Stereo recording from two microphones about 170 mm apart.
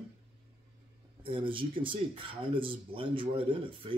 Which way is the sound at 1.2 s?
30° right (ahead or behind).